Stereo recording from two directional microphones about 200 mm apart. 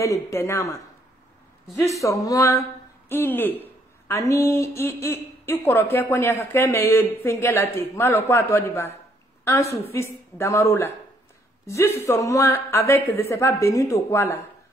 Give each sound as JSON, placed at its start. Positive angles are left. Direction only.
{"t": 0.0, "sound": "a woman's voice", "side_deg": 15}
{"t": 1.8, "sound": "a woman's voice", "side_deg": 15}
{"t": 9.9, "sound": "a woman's voice", "side_deg": 10}